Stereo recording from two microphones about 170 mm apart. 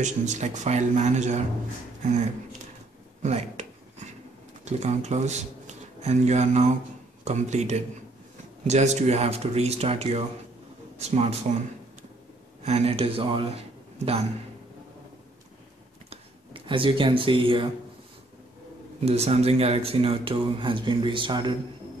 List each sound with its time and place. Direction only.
0.0 s speech: 45° right (ahead or behind)
3.2 s speech: 40° right (ahead or behind)
4.6 s speech: 40° right (ahead or behind)
12.6 s speech: 35° right (ahead or behind)
16.1 s a sound: 30° right (ahead or behind)
18.9 s speech: 35° right (ahead or behind)